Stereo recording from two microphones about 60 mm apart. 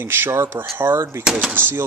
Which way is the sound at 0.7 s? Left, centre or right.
Right.